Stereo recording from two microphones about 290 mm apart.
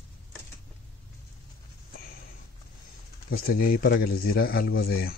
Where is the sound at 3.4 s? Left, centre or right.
Left.